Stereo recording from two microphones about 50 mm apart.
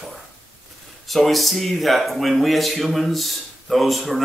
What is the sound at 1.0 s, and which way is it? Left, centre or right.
A man's voice, centre.